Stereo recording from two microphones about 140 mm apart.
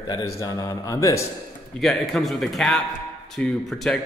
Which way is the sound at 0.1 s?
25° left (ahead or behind).